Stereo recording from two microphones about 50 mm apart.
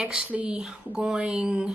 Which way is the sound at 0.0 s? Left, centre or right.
Centre.